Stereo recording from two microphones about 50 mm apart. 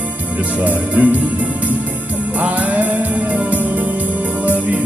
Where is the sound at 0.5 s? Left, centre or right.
Right.